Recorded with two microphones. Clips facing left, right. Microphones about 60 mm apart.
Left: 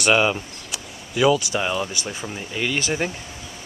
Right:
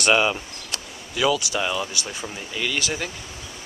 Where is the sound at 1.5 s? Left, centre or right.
Centre.